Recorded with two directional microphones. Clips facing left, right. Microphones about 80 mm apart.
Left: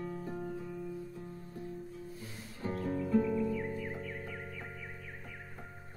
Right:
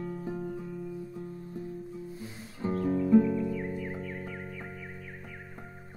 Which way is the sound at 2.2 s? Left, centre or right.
Right.